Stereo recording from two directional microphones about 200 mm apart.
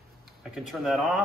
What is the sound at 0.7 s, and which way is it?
Speech, centre (ahead or behind).